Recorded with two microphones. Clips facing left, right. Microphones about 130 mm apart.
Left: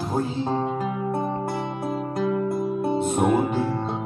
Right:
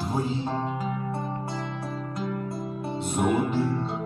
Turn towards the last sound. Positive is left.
turn(degrees=50)  # may be behind; listen again after turning